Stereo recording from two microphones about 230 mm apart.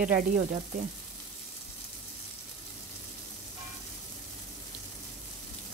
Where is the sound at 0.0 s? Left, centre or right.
Right.